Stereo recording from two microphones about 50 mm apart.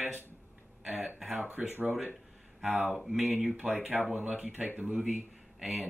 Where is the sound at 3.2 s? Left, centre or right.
Right.